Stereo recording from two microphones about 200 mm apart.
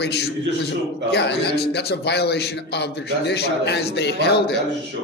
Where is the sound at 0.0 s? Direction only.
55° left (ahead or behind).